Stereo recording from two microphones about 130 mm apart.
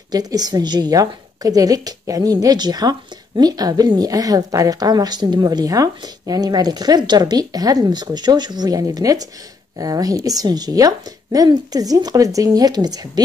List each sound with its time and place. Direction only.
0.1 s a woman's voice: 30° right (ahead or behind)